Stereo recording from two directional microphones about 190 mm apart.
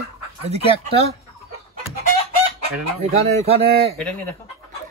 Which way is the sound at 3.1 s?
35° right (ahead or behind).